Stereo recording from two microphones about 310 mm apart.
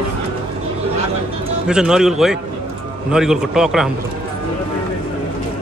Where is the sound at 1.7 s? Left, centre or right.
Centre.